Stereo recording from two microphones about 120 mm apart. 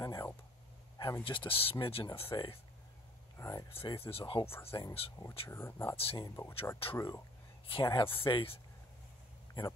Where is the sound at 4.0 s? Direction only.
50° left (ahead or behind).